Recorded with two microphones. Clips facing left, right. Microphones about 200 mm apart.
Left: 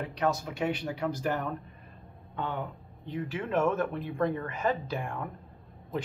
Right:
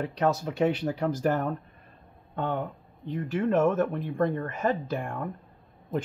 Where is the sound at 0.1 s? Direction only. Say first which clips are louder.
Right 3 dB; 35° right (ahead or behind).